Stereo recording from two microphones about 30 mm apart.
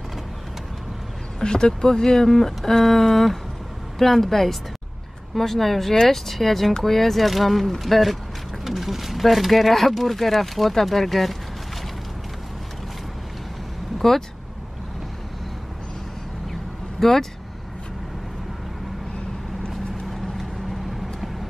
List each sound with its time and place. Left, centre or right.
1.4 s speech: left; by 11.3 s centre
13.9 s vehicle: centre
17.0 s speech: centre
19.7 s vehicle: centre